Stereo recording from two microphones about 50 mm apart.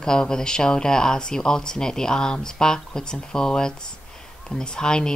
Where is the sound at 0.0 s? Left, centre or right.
Centre.